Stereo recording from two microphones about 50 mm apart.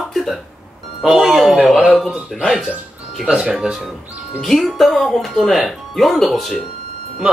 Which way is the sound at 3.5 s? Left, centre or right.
Centre.